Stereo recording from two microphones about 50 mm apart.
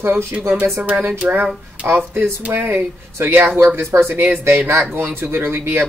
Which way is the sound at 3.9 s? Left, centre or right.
Right.